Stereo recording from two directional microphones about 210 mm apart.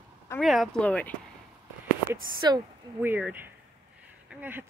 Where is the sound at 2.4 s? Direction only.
20° right (ahead or behind).